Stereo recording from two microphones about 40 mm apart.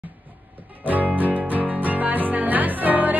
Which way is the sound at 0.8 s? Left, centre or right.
Right.